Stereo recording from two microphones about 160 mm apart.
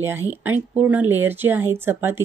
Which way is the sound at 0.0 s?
15° right (ahead or behind).